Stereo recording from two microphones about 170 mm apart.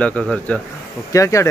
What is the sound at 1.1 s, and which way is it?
Speech, 20° left (ahead or behind).